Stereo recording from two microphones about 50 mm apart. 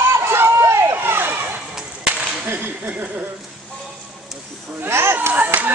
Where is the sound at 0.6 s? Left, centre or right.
Right.